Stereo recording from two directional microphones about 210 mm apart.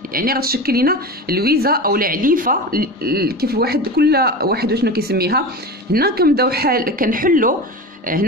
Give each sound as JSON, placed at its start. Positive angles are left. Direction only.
{"t": 0.1, "sound": "speech", "side_deg": -45}